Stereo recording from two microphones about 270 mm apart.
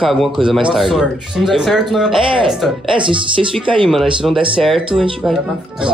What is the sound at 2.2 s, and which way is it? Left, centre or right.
Speech, centre.